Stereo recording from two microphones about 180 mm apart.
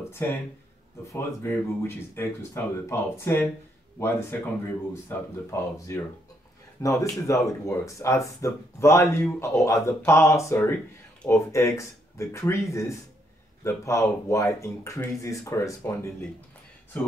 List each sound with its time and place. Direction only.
0.2 s speech: 10° left (ahead or behind)